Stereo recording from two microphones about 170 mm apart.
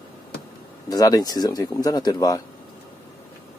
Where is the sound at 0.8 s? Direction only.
20° left (ahead or behind).